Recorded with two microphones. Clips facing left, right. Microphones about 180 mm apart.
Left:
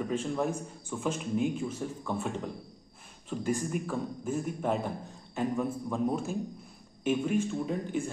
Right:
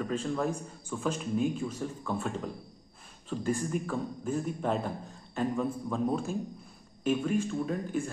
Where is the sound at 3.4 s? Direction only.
10° left (ahead or behind).